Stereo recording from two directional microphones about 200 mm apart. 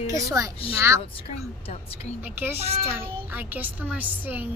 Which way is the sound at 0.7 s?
15° right (ahead or behind).